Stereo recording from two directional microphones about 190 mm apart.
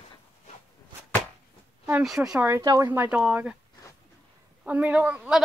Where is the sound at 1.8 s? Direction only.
5° right (ahead or behind).